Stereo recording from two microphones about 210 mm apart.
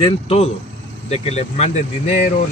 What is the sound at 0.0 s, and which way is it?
A man's voice, 30° left (ahead or behind).